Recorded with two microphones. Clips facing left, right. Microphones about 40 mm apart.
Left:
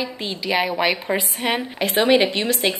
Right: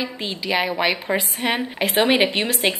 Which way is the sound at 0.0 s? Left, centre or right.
Centre.